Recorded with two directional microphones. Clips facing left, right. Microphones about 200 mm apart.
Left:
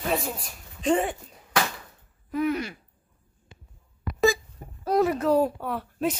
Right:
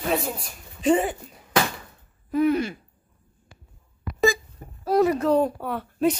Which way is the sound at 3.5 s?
20° left (ahead or behind).